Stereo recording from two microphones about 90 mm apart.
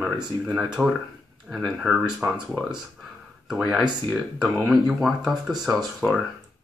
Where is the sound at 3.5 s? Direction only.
Centre (ahead or behind).